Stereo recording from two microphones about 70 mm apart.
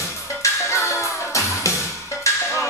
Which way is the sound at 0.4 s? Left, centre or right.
Left.